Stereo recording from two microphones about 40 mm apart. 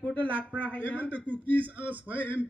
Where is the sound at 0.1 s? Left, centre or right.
Left.